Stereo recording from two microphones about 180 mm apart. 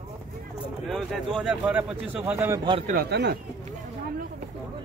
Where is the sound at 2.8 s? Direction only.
55° right (ahead or behind).